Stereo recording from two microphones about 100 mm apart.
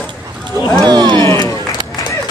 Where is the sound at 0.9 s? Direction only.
45° right (ahead or behind).